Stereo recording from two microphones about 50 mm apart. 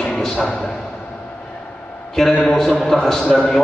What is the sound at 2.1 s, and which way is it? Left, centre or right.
A man's voice, centre.